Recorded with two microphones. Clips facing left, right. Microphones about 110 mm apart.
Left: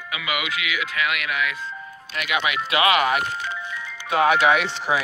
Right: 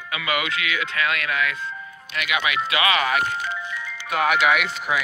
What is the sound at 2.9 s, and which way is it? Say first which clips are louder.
Speech: left 1 dB; 15° left (ahead or behind).